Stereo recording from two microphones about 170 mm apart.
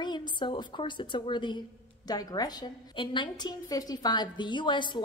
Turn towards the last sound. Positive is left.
turn(degrees=25)  # may be behind; listen again after turning